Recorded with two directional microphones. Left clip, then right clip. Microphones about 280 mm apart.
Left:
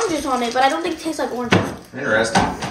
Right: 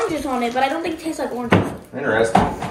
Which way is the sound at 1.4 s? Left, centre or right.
Centre.